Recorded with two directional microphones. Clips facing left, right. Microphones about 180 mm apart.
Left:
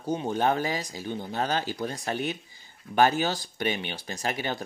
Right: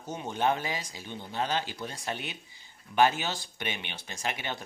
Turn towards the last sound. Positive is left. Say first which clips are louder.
# left 5 dB
turn(degrees=40)  # may be behind; listen again after turning